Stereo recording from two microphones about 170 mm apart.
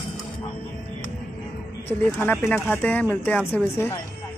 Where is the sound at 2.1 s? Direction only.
10° left (ahead or behind).